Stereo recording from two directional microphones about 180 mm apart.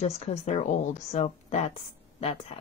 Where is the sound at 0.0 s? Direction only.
35° left (ahead or behind).